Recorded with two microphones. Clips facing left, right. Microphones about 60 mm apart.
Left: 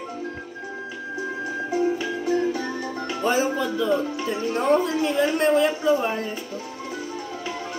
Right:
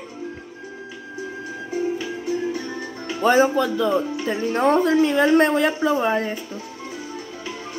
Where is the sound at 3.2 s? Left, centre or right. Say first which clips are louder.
Right 6 dB; right.